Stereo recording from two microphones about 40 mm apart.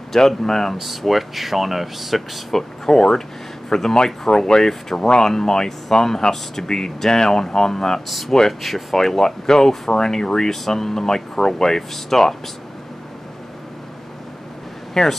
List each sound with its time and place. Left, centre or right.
0.1 s speech: centre
0.7 s speech: centre
8.1 s speech: centre
15.0 s speech: centre